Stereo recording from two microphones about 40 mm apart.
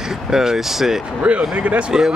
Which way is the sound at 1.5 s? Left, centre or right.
Right.